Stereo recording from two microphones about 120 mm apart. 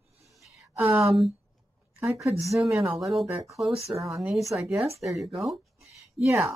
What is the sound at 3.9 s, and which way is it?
Speech, 25° right (ahead or behind).